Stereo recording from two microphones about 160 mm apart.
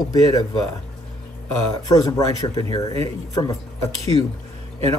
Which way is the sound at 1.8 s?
25° left (ahead or behind).